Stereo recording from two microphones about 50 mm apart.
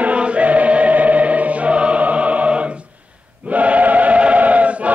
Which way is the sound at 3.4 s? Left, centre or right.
Right.